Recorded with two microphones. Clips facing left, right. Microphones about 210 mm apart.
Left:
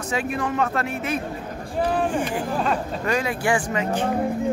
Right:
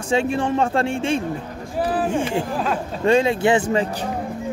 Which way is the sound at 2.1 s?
25° right (ahead or behind).